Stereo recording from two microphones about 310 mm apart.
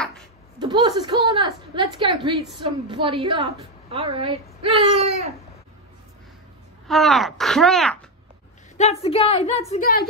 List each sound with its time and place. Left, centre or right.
0.6 s a woman's voice: centre
6.9 s speech: centre
8.7 s a woman's voice: centre